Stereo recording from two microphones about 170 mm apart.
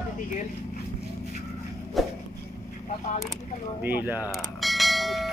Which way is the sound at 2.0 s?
Centre (ahead or behind).